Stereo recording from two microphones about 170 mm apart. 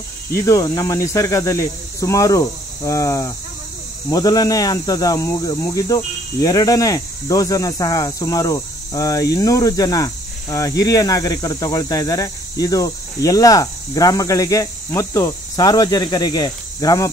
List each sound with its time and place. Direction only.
0.5 s speech: 20° left (ahead or behind)